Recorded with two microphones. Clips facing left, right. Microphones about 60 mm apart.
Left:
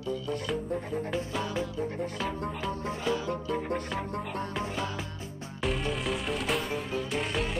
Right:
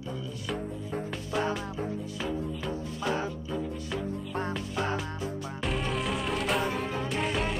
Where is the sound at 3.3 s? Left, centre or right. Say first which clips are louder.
Left 3 dB; left.